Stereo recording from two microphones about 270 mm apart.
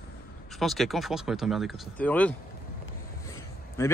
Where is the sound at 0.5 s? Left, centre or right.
Centre.